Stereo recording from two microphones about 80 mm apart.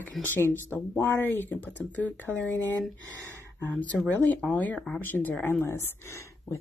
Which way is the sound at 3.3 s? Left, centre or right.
Left.